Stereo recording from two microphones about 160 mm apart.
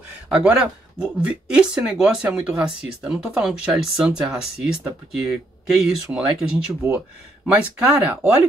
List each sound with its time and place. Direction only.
0.3 s speech: 5° right (ahead or behind)